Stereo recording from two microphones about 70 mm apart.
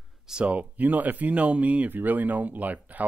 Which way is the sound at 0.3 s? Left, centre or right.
Centre.